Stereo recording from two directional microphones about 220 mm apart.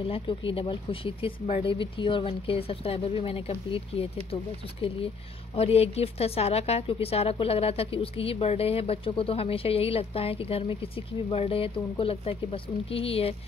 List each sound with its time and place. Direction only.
0.1 s a woman's voice: 25° left (ahead or behind)
5.6 s a woman's voice: 25° left (ahead or behind)